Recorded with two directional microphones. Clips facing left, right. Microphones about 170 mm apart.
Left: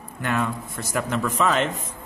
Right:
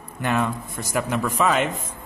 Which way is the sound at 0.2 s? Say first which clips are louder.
Right 2 dB; 15° right (ahead or behind).